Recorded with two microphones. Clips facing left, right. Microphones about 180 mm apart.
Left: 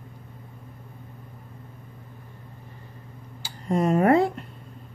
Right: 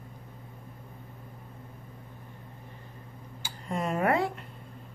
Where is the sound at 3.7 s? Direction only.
40° left (ahead or behind).